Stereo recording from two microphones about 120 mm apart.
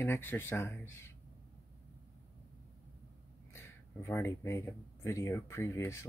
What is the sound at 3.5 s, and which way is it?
Speech, 20° left (ahead or behind).